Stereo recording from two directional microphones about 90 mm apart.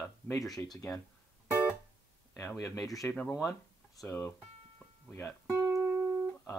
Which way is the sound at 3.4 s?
35° left (ahead or behind).